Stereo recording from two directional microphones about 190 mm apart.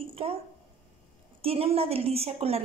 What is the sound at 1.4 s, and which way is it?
A woman's voice, 30° right (ahead or behind).